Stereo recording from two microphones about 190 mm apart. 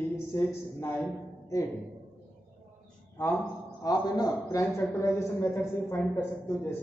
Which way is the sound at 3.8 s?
20° left (ahead or behind).